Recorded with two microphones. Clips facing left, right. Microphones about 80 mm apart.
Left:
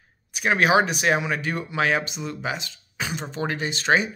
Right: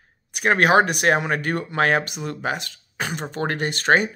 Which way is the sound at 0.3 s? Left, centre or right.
Right.